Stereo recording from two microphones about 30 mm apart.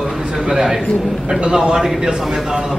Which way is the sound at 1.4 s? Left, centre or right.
Right.